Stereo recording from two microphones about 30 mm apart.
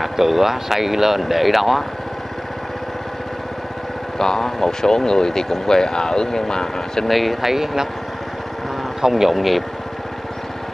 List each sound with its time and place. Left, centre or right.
0.0 s speech: centre
4.2 s speech: centre
7.1 s speech: centre
7.4 s speech: centre
9.1 s speech: centre